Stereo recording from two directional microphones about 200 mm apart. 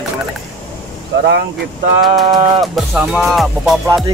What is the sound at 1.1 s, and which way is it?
Speech, 60° right (ahead or behind).